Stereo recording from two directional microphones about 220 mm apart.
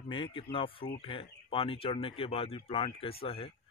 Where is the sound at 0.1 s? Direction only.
25° left (ahead or behind).